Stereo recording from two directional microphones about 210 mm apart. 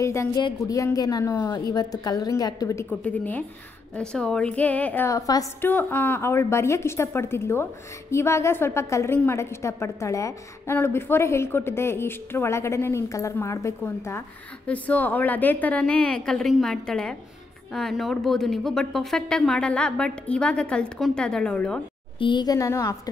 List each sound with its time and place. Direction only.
0.0 s a woman's voice: 15° left (ahead or behind)
22.2 s a woman's voice: 20° left (ahead or behind)